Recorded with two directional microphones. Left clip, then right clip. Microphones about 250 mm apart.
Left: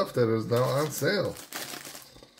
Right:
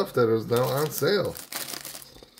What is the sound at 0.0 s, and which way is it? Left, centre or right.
Speech, centre.